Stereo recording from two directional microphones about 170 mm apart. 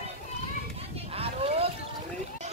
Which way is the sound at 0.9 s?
35° right (ahead or behind).